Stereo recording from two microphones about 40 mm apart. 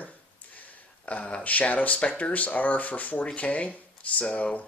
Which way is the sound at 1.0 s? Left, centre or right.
Left.